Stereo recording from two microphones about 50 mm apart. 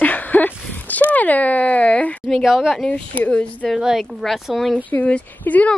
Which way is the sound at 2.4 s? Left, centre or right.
Centre.